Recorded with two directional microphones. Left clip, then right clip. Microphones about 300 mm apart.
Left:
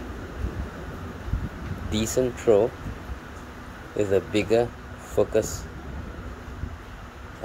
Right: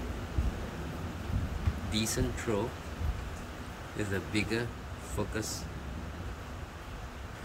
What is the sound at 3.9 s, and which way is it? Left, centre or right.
Speech, centre.